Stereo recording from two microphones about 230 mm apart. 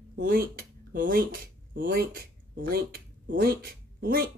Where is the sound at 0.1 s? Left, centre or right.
Right.